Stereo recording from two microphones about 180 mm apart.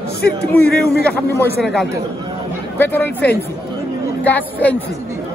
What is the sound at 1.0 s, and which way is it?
Speech, 10° left (ahead or behind).